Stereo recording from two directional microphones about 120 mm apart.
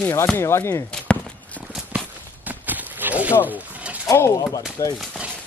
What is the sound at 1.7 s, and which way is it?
Walk, 15° right (ahead or behind).